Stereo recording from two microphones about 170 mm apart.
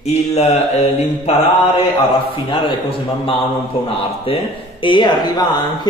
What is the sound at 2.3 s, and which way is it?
Mantra, 30° left (ahead or behind).